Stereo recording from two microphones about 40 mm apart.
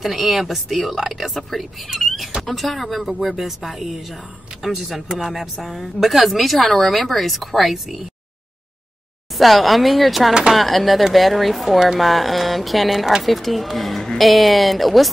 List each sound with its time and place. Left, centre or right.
0.0 s a woman's voice: centre
9.4 s a woman's voice: centre